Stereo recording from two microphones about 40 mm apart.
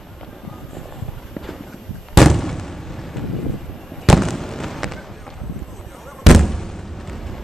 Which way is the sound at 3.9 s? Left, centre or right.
Centre.